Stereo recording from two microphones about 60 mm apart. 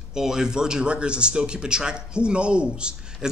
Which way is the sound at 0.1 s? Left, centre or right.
Centre.